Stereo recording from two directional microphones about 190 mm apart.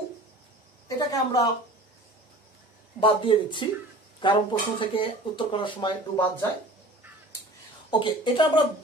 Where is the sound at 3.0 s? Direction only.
25° left (ahead or behind).